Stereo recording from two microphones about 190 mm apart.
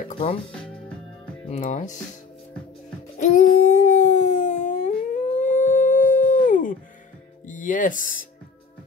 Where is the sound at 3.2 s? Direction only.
40° left (ahead or behind).